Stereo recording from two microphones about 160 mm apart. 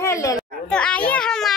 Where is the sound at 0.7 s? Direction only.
5° left (ahead or behind).